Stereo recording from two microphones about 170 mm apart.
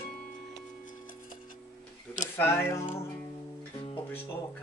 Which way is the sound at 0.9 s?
50° left (ahead or behind).